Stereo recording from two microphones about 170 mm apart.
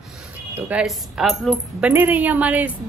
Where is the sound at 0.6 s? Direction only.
10° right (ahead or behind).